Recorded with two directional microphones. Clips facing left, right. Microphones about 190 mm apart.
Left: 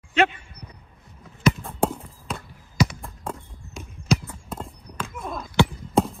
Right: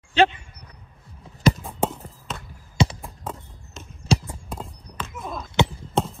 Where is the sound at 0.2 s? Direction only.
30° right (ahead or behind).